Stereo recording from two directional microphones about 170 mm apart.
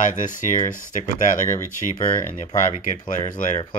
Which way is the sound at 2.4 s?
40° left (ahead or behind).